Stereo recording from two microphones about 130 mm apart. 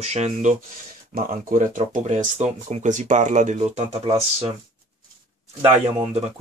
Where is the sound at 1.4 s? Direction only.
90° right; by 4.5 s 50° right (ahead or behind).